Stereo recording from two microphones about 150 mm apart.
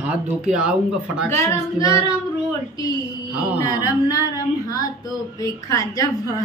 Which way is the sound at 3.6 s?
25° left (ahead or behind).